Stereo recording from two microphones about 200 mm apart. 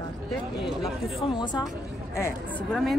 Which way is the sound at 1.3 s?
20° left (ahead or behind).